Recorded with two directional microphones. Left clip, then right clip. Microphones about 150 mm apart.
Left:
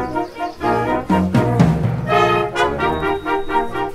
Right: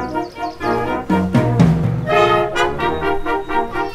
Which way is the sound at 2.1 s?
5° right (ahead or behind).